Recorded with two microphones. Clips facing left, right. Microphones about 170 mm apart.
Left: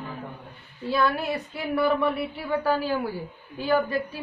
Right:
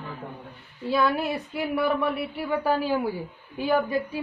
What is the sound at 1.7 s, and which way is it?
A woman's voice, 5° right (ahead or behind).